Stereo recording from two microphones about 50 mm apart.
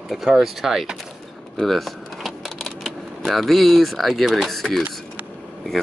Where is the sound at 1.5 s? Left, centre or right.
Centre.